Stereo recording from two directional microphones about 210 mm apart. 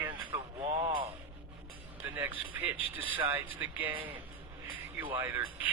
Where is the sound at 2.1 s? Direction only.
10° right (ahead or behind).